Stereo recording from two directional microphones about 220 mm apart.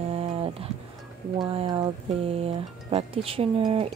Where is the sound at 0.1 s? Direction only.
25° right (ahead or behind).